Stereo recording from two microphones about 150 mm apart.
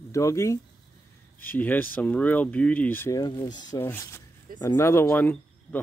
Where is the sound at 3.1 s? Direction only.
25° left (ahead or behind).